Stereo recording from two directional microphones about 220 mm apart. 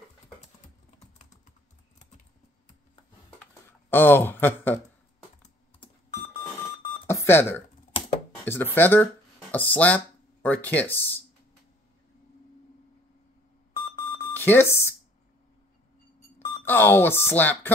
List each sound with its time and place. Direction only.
3.3 s a sound: 10° left (ahead or behind)
7.1 s a sound: 10° left (ahead or behind)
8.5 s speech: 10° left (ahead or behind)
13.7 s alarm clock: 30° left (ahead or behind)
14.3 s speech: 10° left (ahead or behind)
16.6 s speech: 10° left (ahead or behind)